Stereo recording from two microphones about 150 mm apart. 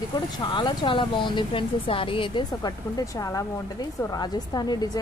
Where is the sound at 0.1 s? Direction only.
30° left (ahead or behind).